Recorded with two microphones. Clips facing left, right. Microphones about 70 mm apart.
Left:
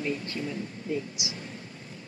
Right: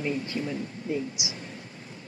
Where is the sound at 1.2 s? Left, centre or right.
Right.